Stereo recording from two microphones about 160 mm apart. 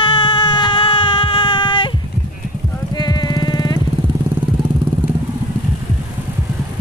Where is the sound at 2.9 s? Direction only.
25° left (ahead or behind).